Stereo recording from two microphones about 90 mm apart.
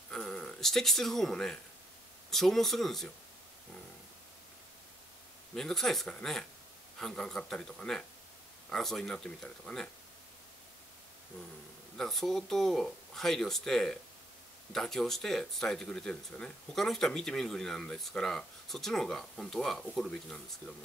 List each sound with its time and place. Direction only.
0.1 s speech: 10° left (ahead or behind)
5.5 s speech: 5° left (ahead or behind)
12.0 s speech: 5° left (ahead or behind)